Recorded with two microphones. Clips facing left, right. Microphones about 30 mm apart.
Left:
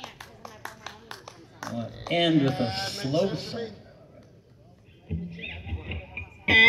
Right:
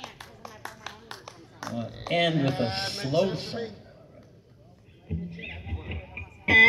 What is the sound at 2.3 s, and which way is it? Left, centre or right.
Speech, centre.